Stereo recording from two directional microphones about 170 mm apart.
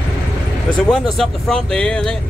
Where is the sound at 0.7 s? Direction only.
Centre (ahead or behind).